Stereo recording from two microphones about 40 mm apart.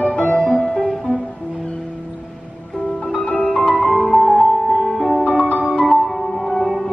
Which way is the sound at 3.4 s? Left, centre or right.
Left.